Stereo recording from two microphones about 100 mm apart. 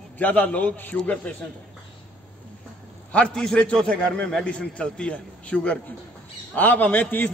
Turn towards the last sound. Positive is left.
turn(degrees=15)  # may be behind; listen again after turning